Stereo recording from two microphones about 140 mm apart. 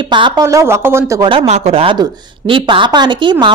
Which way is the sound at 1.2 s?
45° right (ahead or behind).